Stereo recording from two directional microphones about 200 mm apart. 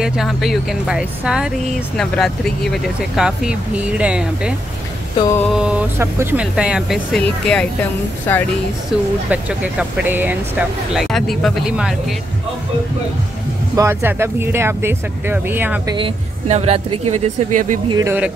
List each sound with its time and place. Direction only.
0.0 s speech: 5° right (ahead or behind)
8.9 s speech: centre (ahead or behind)
11.1 s speech: centre (ahead or behind)
13.7 s speech: 15° right (ahead or behind)
16.0 s speech: 30° right (ahead or behind)
17.9 s speech: 10° right (ahead or behind)